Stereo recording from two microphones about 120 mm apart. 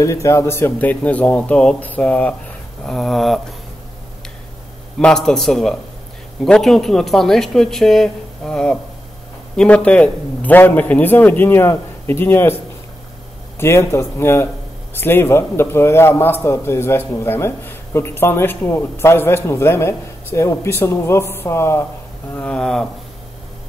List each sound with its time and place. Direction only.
0.0 s a man's voice: 25° left (ahead or behind); by 3.3 s centre (ahead or behind)
5.0 s a man's voice: 5° left (ahead or behind)
13.6 s a man's voice: 25° left (ahead or behind)
22.3 s speech: 10° left (ahead or behind)